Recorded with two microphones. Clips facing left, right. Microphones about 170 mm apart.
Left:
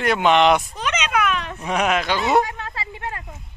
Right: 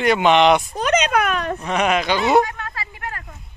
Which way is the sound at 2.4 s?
20° left (ahead or behind).